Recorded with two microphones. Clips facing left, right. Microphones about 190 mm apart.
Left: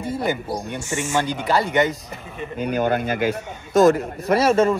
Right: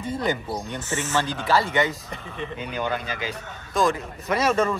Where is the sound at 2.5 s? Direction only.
45° left (ahead or behind).